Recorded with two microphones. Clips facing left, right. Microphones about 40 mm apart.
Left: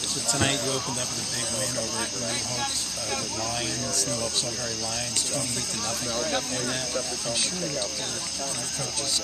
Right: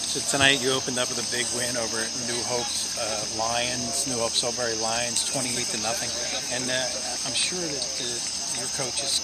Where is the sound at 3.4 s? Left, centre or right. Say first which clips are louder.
Right 3 dB; right.